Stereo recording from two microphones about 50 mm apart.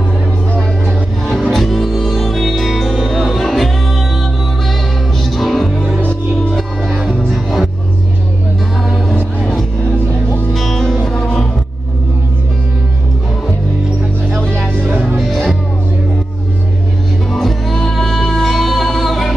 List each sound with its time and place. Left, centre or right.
0.8 s music: centre
5.2 s music: centre
6.9 s music: centre
9.1 s music: centre
14.3 s music: centre
15.1 s music: centre
17.3 s music: centre